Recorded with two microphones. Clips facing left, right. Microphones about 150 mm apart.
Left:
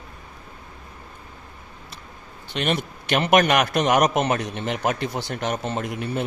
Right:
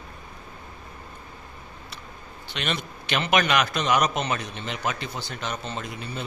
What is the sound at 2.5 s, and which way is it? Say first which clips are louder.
Speech: left 6 dB; 50° left (ahead or behind).